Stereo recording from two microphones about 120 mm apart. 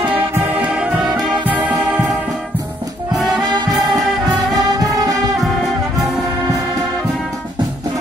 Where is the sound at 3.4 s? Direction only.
35° right (ahead or behind).